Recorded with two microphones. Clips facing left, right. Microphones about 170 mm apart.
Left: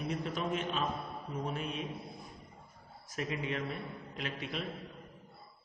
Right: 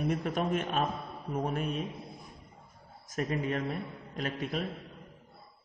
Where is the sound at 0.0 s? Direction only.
50° right (ahead or behind).